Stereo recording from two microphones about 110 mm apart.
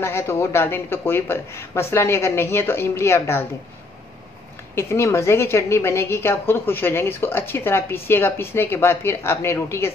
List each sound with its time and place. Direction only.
0.0 s a woman's voice: 25° left (ahead or behind)
4.7 s a woman's voice: 25° left (ahead or behind)